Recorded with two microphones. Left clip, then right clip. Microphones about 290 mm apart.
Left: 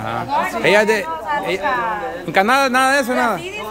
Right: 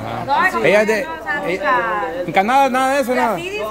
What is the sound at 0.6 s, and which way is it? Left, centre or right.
Speech, centre.